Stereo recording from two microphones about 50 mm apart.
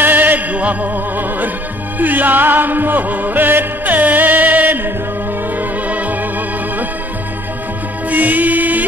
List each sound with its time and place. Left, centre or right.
0.0 s music: right
8.1 s music: right